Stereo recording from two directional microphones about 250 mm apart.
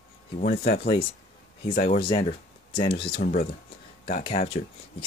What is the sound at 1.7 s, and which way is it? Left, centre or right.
Speech, left.